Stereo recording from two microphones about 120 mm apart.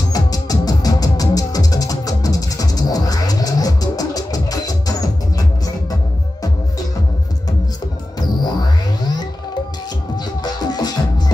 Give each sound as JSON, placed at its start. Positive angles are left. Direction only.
{"t": 0.1, "sound": "music", "side_deg": 30}
{"t": 8.2, "sound": "music", "side_deg": 35}